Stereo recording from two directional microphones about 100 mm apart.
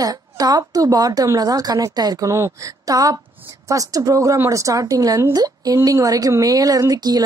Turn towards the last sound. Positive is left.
turn(degrees=-40)  # may be behind; listen again after turning